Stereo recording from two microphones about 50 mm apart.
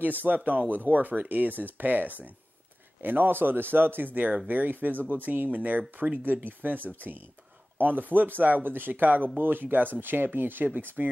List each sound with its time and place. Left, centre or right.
0.0 s a man's voice: right